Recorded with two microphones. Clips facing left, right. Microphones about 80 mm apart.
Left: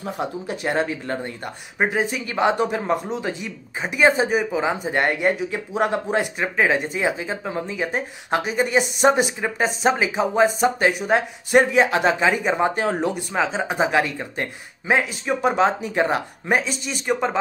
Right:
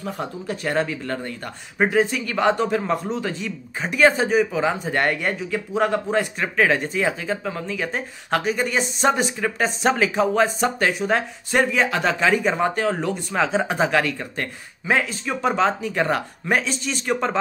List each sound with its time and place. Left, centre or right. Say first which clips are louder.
0.2 s speech: left 3 dB; centre
11.7 s speech: left 3 dB; left
13.1 s speech: right 1 dB; centre
13.7 s speech: even; centre